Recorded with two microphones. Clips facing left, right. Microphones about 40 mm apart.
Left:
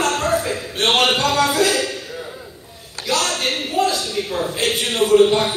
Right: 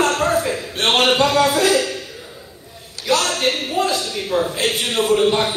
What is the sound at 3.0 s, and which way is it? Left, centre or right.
A man's voice, centre.